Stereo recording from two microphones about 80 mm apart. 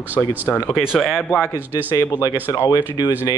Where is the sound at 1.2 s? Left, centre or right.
Left.